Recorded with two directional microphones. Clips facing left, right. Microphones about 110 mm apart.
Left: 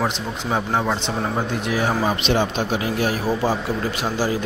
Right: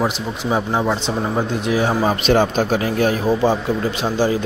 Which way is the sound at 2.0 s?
45° right (ahead or behind).